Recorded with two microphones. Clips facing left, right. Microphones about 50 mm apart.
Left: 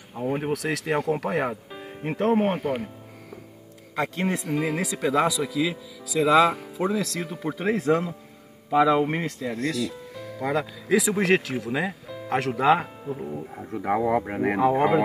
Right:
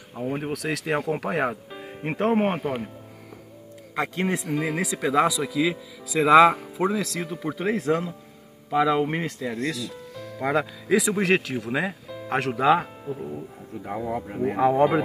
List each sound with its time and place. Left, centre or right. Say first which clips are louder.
0.1 s speech: left 2 dB; centre
2.0 s speech: even; centre
2.4 s speech: even; centre
4.2 s speech: even; centre
10.1 s music: even; centre
10.4 s speech: right 2 dB; centre
11.1 s speech: even; centre
13.6 s speech: left 10 dB; left